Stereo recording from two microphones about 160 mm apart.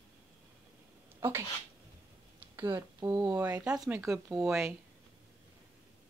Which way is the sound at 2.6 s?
20° right (ahead or behind).